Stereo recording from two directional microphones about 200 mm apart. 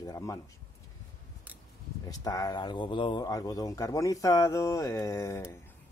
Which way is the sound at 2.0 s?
20° left (ahead or behind).